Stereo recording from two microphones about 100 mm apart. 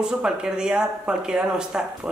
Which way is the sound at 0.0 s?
5° right (ahead or behind).